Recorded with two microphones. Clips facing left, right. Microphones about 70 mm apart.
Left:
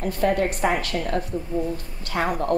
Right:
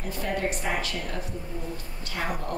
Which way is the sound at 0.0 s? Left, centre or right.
Left.